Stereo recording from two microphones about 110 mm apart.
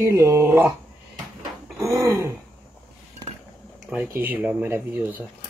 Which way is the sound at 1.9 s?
25° right (ahead or behind).